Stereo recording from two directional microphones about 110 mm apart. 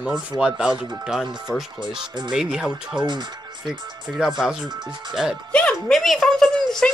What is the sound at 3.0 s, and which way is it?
Speech, 40° right (ahead or behind).